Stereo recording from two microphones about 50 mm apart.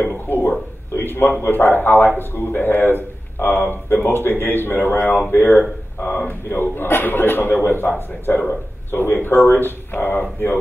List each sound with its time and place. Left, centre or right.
0.0 s speech: left
0.9 s a man's voice: left
6.5 s speech: left
8.9 s speech: left